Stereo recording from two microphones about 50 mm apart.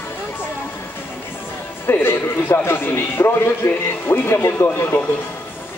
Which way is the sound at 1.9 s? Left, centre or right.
Left.